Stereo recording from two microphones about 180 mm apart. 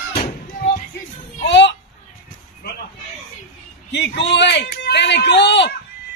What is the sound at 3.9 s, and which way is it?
A man's voice, 70° left (ahead or behind).